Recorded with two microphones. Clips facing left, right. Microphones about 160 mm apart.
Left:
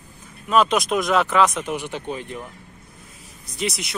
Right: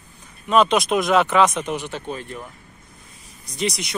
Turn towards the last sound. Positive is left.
turn(degrees=0)  # may be behind; listen again after turning